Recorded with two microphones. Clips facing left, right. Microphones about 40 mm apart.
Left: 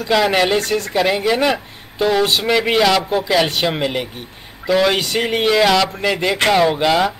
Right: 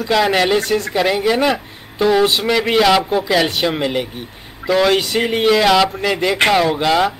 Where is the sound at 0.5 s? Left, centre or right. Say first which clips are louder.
Right 2 dB; right.